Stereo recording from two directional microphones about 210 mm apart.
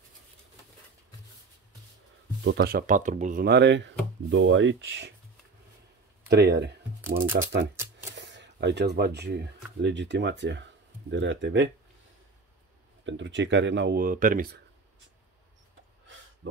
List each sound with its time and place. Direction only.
2.4 s speech: 50° right (ahead or behind)
6.2 s speech: 50° right (ahead or behind)
13.0 s speech: 60° right (ahead or behind); by 14.6 s 45° right (ahead or behind)